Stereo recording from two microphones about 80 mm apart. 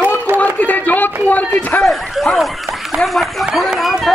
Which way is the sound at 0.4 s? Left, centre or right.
Left.